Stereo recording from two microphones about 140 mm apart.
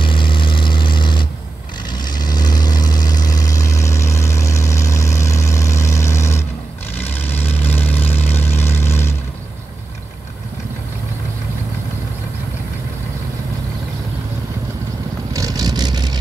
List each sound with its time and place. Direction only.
0.0 s vehicle: 35° left (ahead or behind); by 9.1 s 15° left (ahead or behind)
15.3 s vehicle: 25° right (ahead or behind)